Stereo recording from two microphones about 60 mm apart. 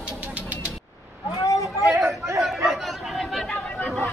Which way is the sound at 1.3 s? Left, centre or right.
Left.